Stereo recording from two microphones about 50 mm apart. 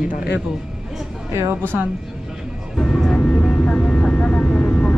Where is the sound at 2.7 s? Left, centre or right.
Centre.